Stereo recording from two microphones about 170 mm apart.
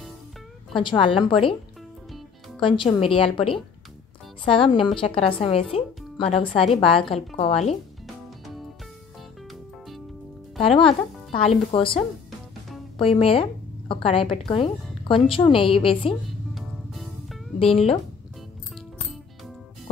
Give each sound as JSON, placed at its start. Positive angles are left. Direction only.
{"t": 0.7, "sound": "speech", "side_deg": 30}
{"t": 2.6, "sound": "speech", "side_deg": 30}
{"t": 9.5, "sound": "music", "side_deg": 0}
{"t": 10.6, "sound": "speech", "side_deg": 35}
{"t": 16.5, "sound": "music", "side_deg": 0}
{"t": 18.8, "sound": "music", "side_deg": 0}